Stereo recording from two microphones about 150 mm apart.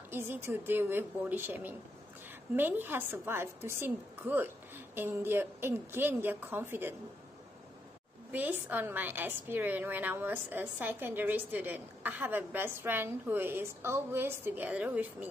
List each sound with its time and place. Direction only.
0.1 s a woman's voice: 15° right (ahead or behind)
8.3 s a woman's voice: 10° right (ahead or behind)